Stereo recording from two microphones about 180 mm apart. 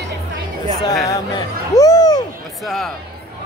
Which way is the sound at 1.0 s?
20° left (ahead or behind).